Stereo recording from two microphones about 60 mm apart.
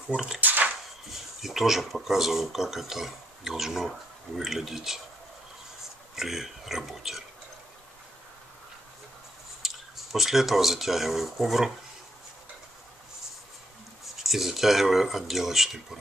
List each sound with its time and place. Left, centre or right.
0.1 s speech: centre
0.4 s a sound: right
1.4 s speech: centre
6.1 s speech: centre
9.6 s a sound: centre
10.1 s speech: centre
14.1 s speech: centre